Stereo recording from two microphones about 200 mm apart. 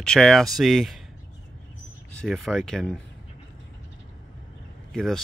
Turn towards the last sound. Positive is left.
turn(degrees=5)  # may be behind; listen again after turning